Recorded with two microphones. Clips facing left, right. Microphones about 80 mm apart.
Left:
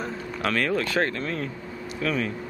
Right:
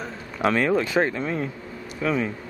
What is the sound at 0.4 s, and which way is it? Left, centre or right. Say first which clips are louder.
Speech: right 4 dB; centre.